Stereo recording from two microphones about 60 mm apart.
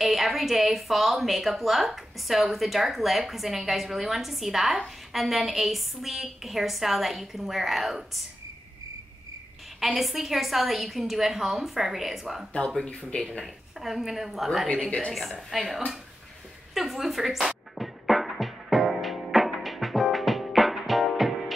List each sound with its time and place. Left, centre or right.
0.0 s a woman's voice: centre
9.8 s a woman's voice: centre
12.5 s speech: centre
13.7 s a woman's voice: centre
14.7 s speech: centre
15.5 s a woman's voice: centre
16.7 s music: centre